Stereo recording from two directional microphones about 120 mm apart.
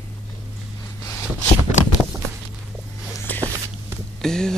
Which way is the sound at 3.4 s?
25° right (ahead or behind).